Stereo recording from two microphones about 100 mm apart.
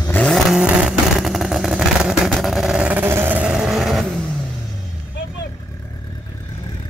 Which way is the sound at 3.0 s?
20° right (ahead or behind).